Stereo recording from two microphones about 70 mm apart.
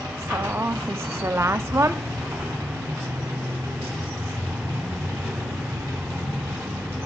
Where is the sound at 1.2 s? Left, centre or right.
Right.